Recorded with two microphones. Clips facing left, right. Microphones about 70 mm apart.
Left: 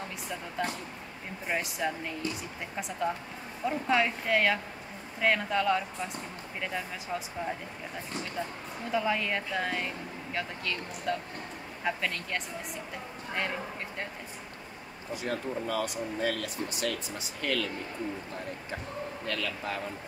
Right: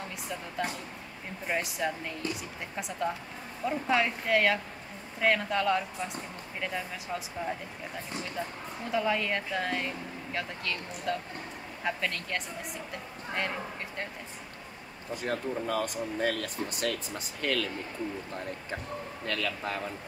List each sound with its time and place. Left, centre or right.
1.5 s speech: centre
8.9 s speech: centre
15.2 s speech: right
19.2 s speech: right